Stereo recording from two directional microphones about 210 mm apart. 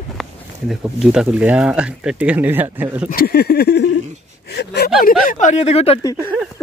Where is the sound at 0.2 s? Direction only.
Centre (ahead or behind).